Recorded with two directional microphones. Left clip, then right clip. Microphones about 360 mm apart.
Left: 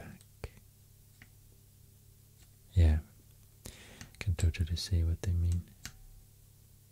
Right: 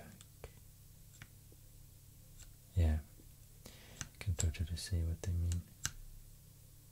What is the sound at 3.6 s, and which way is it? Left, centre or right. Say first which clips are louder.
Whispering: left 6 dB; left.